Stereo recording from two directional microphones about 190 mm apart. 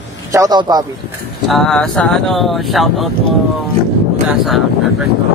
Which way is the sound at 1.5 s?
5° left (ahead or behind).